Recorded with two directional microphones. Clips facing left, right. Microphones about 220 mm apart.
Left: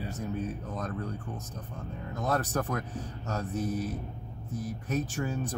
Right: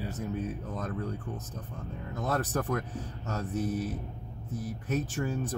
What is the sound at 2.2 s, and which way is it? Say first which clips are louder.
Speech: even; 5° right (ahead or behind).